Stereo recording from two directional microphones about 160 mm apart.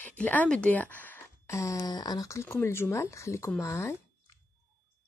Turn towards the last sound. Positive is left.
turn(degrees=15)  # may be behind; listen again after turning